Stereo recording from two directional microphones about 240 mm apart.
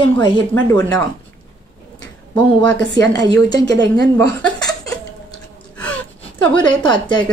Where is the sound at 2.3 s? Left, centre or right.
Right.